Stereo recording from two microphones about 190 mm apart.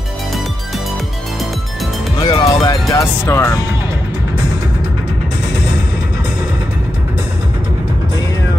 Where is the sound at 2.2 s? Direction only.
20° left (ahead or behind).